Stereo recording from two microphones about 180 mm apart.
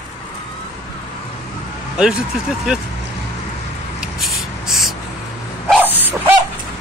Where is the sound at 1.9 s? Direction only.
5° right (ahead or behind).